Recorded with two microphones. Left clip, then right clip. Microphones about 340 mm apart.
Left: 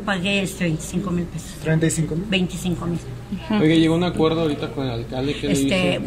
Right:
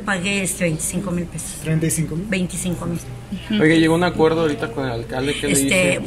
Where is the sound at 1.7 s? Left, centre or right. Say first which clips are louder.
Left 3 dB; left.